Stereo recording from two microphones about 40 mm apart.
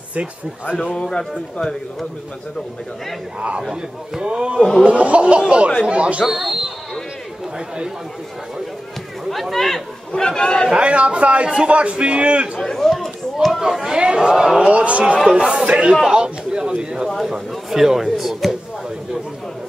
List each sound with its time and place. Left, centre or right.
1.6 s a man's voice: centre
3.3 s a man's voice: right
3.6 s a man's voice: centre
4.8 s a man's voice: right
6.2 s speech: centre
7.5 s a man's voice: right
9.3 s speech: centre
10.1 s a man's voice: centre
10.7 s a man's voice: right
12.6 s chatter: centre
13.6 s a man's voice: centre
14.7 s a man's voice: right; by 17.1 s centre
17.3 s speech: centre